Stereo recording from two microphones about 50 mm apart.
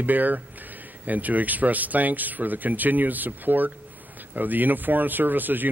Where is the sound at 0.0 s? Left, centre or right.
Right.